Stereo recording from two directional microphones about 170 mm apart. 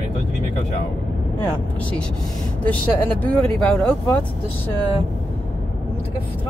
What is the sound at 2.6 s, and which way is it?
Speech, 10° left (ahead or behind).